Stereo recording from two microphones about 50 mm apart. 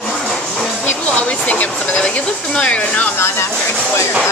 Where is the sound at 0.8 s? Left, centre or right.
Left.